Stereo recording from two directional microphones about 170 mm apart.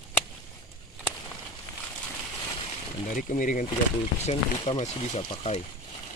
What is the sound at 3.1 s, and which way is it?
Speech, 50° left (ahead or behind).